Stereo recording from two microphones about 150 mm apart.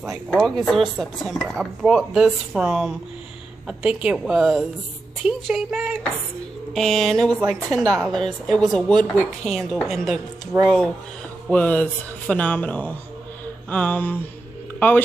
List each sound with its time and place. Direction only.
0.0 s speech: centre (ahead or behind)
7.8 s a woman's voice: 25° right (ahead or behind)
8.1 s speech: 5° left (ahead or behind)
10.5 s speech: 15° right (ahead or behind)
11.4 s speech: 10° left (ahead or behind)